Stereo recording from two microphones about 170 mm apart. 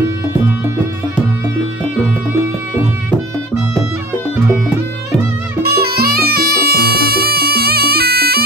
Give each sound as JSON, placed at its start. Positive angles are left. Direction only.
{"t": 5.6, "sound": "music", "side_deg": -65}